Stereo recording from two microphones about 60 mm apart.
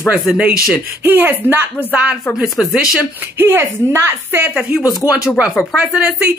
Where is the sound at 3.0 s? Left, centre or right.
Right.